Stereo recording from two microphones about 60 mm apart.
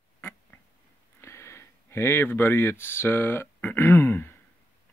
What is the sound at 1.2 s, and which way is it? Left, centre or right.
Speech, left.